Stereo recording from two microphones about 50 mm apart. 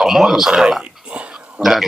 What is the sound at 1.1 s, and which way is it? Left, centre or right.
Burping, right.